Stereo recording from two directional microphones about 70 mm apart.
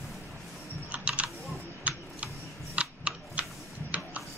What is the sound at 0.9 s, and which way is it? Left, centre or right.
Typing, centre.